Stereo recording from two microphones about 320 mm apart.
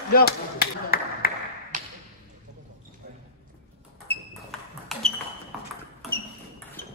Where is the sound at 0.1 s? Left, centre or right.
Left.